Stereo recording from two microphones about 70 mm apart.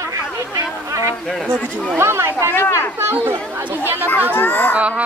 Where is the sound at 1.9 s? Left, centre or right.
Right.